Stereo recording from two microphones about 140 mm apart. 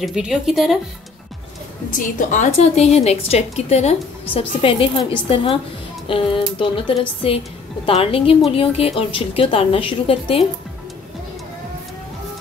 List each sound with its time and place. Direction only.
0.0 s speech: 5° right (ahead or behind)
1.9 s a woman's voice: 70° left (ahead or behind); by 10.4 s 40° left (ahead or behind)